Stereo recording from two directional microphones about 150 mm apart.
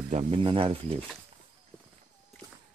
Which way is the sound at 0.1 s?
40° right (ahead or behind).